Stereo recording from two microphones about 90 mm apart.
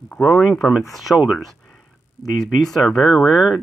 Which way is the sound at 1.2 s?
5° right (ahead or behind).